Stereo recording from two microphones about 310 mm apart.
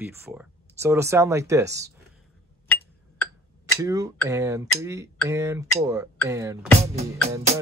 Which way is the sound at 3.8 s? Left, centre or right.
Centre.